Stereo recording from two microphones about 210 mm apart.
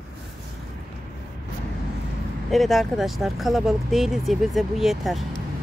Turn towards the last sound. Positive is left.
turn(degrees=0)  # may be behind; listen again after turning